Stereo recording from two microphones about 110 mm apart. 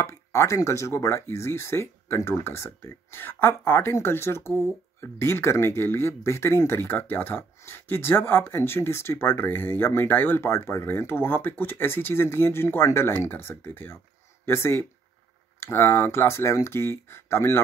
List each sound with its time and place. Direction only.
0.0 s speech: 25° left (ahead or behind)